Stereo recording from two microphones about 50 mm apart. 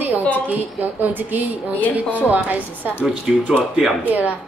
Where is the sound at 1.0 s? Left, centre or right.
Right.